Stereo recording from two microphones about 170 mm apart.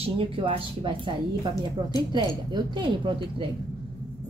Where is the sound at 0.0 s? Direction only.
30° right (ahead or behind).